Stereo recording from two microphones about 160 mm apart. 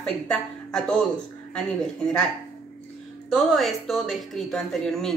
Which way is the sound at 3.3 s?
Centre (ahead or behind).